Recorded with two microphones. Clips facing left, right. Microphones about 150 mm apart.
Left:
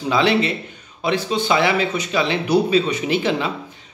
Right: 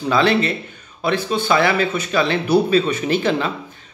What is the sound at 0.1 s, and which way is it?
Speech, 15° left (ahead or behind).